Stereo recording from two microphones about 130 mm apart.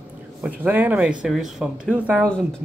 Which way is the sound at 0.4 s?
15° right (ahead or behind).